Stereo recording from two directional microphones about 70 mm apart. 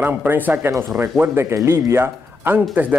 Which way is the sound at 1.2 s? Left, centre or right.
Right.